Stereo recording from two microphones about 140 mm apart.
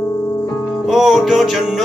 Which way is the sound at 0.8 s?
Centre (ahead or behind).